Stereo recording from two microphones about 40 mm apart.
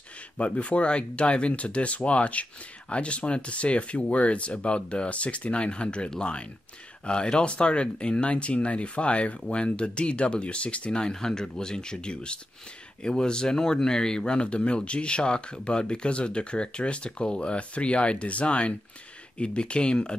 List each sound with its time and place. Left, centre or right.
0.4 s speech: left